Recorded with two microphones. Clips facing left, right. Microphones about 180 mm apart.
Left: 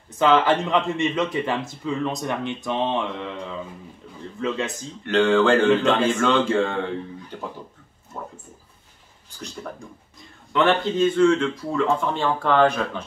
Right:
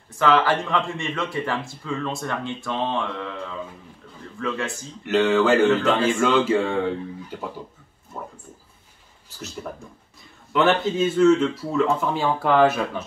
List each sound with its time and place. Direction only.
0.2 s speech: 20° left (ahead or behind)
5.0 s speech: 5° right (ahead or behind)
8.1 s a sound: 5° right (ahead or behind)
10.5 s speech: 5° right (ahead or behind)